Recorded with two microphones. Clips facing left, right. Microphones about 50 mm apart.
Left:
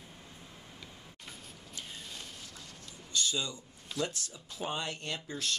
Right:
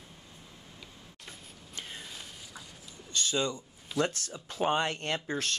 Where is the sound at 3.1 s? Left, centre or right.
Right.